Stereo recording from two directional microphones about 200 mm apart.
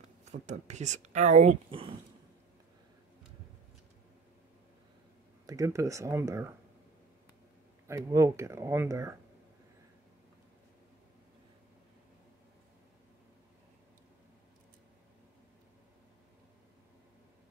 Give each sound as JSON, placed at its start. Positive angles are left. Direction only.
{"t": 0.2, "sound": "speech", "side_deg": -35}
{"t": 5.5, "sound": "speech", "side_deg": -15}
{"t": 7.8, "sound": "speech", "side_deg": -15}